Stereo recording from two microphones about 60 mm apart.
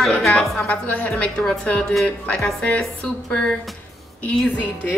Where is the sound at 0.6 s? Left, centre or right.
Centre.